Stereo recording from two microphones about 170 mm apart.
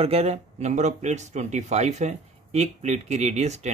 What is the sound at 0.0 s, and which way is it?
Speech, 35° right (ahead or behind).